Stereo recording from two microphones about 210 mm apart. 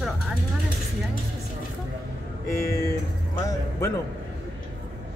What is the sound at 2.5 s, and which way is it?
Speech, 15° left (ahead or behind).